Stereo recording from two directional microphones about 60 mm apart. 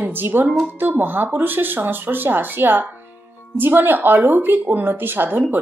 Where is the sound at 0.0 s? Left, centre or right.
Right.